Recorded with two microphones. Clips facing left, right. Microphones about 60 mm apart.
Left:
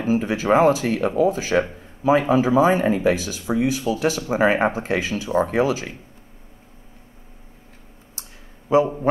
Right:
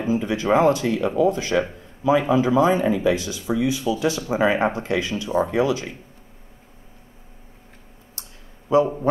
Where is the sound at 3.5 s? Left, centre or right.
Left.